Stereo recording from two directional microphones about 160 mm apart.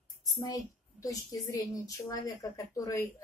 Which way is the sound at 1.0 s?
20° left (ahead or behind).